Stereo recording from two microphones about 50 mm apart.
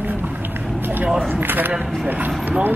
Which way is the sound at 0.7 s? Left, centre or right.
Right.